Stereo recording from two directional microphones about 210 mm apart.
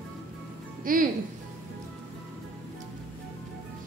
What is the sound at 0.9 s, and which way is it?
Speech, 40° right (ahead or behind).